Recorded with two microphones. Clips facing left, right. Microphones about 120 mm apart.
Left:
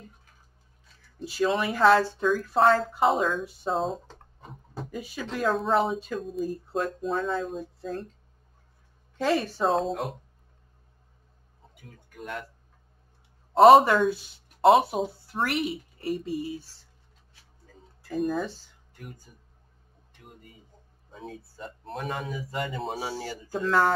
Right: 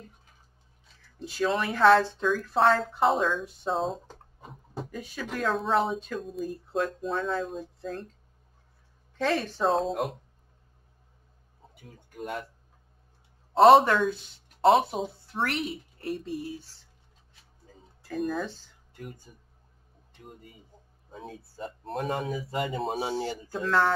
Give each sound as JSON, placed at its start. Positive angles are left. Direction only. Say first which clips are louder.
{"t": 1.2, "sound": "speech", "louder": "left 2 dB", "side_deg": 5}
{"t": 4.1, "sound": "a sound", "louder": "even", "side_deg": 0}
{"t": 5.4, "sound": "speech", "louder": "left 2 dB", "side_deg": 0}
{"t": 9.2, "sound": "speech", "louder": "left 1 dB", "side_deg": 5}
{"t": 11.7, "sound": "a sound", "louder": "even", "side_deg": -30}
{"t": 13.5, "sound": "speech", "louder": "left 2 dB", "side_deg": 0}
{"t": 18.0, "sound": "speech", "louder": "left 2 dB", "side_deg": 0}
{"t": 19.3, "sound": "speech", "louder": "right 2 dB", "side_deg": -25}
{"t": 22.0, "sound": "speech", "louder": "right 3 dB", "side_deg": -35}
{"t": 22.8, "sound": "speech", "louder": "right 3 dB", "side_deg": -20}
{"t": 23.6, "sound": "speech", "louder": "left 1 dB", "side_deg": 5}